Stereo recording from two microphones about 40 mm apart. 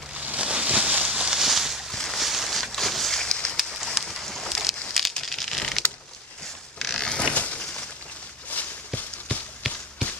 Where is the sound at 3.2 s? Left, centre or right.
Left.